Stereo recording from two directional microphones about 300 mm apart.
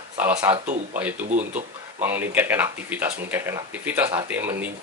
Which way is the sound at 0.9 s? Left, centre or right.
Centre.